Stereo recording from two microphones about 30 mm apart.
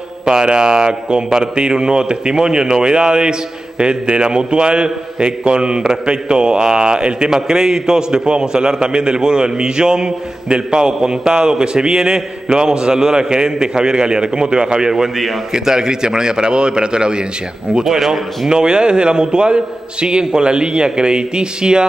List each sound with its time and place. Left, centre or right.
0.2 s a man's voice: right
14.9 s a man's voice: centre; by 17.2 s right
17.8 s speech: centre
18.5 s a man's voice: right